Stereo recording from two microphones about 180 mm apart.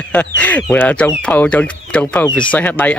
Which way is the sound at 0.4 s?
10° left (ahead or behind).